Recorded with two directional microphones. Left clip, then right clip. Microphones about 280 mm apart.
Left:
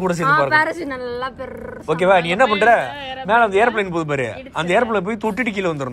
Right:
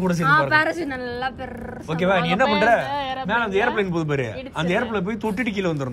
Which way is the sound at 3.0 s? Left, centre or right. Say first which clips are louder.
Right 2 dB; right.